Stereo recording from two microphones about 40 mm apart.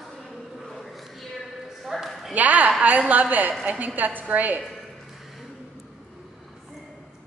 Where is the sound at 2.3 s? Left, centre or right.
Right.